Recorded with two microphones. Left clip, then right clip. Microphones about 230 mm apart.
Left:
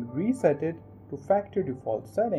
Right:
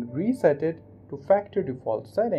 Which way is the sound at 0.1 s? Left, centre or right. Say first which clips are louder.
Right 3 dB; centre.